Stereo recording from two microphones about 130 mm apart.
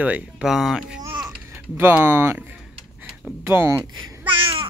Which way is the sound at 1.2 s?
15° right (ahead or behind).